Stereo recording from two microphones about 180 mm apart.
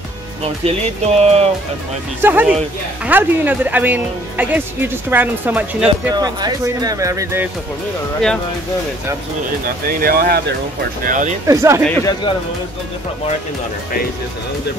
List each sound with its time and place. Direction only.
0.7 s speech: 35° right (ahead or behind)
2.2 s speech: 10° right (ahead or behind)
6.1 s speech: 20° right (ahead or behind)
9.8 s speech: 55° right (ahead or behind)
11.4 s speech: 15° right (ahead or behind)
11.9 s speech: 20° left (ahead or behind)